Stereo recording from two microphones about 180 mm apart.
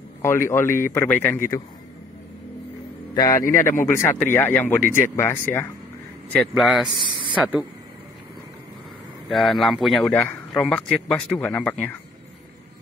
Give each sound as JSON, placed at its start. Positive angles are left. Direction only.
{"t": 0.2, "sound": "speech", "side_deg": 15}
{"t": 3.2, "sound": "a man's voice", "side_deg": 20}
{"t": 9.3, "sound": "a man's voice", "side_deg": 0}